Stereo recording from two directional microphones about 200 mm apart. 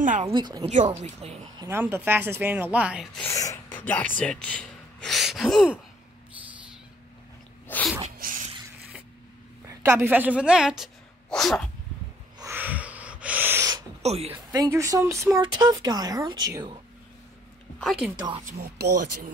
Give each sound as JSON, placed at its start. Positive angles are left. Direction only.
{"t": 0.0, "sound": "a woman's voice", "side_deg": -40}
{"t": 0.3, "sound": "a child's voice", "side_deg": -20}
{"t": 1.6, "sound": "speech", "side_deg": -10}
{"t": 3.3, "sound": "speech", "side_deg": 15}
{"t": 7.6, "sound": "sneeze", "side_deg": 10}
{"t": 8.2, "sound": "a sound", "side_deg": -40}
{"t": 9.7, "sound": "a woman's voice", "side_deg": -10}
{"t": 12.4, "sound": "sneeze", "side_deg": -10}
{"t": 14.0, "sound": "a woman's voice", "side_deg": -30}
{"t": 14.5, "sound": "a child's voice", "side_deg": -15}
{"t": 17.7, "sound": "speech", "side_deg": 0}
{"t": 18.1, "sound": "a child's voice", "side_deg": -20}
{"t": 18.6, "sound": "speech", "side_deg": -45}